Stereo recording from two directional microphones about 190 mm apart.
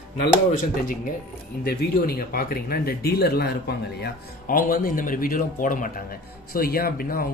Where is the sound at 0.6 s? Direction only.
45° left (ahead or behind).